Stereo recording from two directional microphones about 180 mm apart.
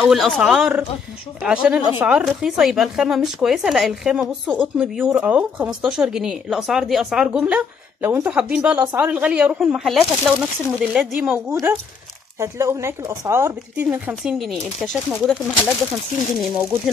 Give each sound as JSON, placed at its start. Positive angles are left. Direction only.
{"t": 0.0, "sound": "speech", "side_deg": 0}
{"t": 16.3, "sound": "speech", "side_deg": 0}